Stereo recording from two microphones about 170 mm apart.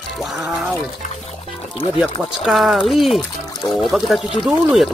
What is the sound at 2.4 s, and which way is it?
Speech, centre (ahead or behind).